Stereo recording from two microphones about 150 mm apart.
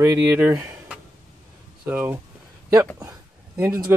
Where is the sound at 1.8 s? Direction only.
15° right (ahead or behind).